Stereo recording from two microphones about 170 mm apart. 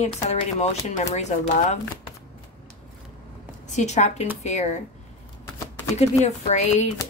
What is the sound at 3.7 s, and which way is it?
Speech, 45° left (ahead or behind).